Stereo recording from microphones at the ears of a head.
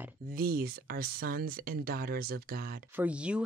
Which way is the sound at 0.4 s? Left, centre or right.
Right.